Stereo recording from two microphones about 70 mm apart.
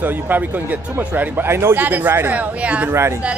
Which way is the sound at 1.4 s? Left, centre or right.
Right.